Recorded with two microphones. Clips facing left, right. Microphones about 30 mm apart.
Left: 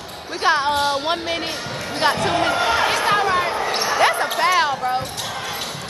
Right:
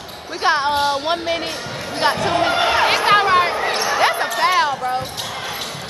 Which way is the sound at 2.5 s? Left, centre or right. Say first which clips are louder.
Right 2 dB; right.